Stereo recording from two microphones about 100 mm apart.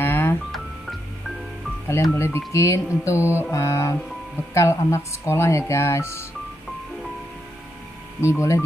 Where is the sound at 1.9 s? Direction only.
25° left (ahead or behind).